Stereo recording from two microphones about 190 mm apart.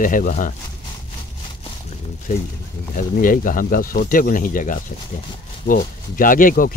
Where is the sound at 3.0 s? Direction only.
45° left (ahead or behind).